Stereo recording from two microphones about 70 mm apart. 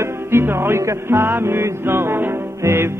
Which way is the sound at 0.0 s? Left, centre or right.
Right.